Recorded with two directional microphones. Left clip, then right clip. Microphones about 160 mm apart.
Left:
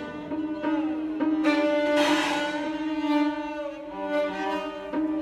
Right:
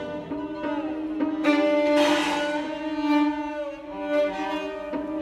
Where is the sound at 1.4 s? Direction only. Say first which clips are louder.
Right 4 dB; 15° right (ahead or behind).